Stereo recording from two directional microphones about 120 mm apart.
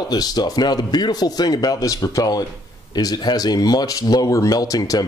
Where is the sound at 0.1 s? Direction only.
35° left (ahead or behind).